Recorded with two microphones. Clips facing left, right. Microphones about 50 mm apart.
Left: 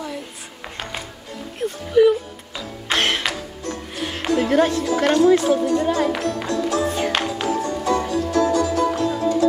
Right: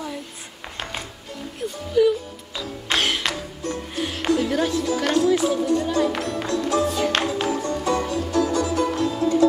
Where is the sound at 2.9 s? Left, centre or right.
Left.